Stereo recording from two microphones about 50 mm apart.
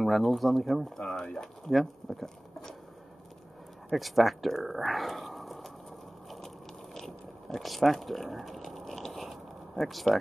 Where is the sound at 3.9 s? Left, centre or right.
Centre.